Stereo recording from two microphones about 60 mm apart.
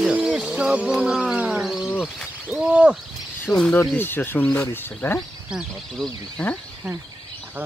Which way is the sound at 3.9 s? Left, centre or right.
Left.